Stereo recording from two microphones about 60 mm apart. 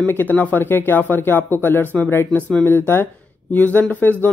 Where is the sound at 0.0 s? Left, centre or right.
Left.